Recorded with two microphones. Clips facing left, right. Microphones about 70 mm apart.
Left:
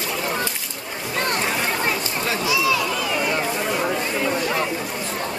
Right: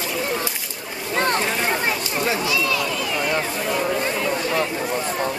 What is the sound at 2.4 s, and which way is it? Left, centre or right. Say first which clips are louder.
Run: left 2 dB; centre.